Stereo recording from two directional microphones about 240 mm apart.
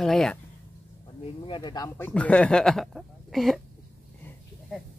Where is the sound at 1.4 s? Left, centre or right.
Centre.